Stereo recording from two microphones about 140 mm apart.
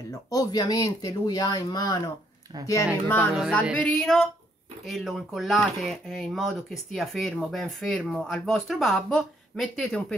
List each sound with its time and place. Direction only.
0.1 s speech: 25° left (ahead or behind)
3.7 s speech: 5° left (ahead or behind)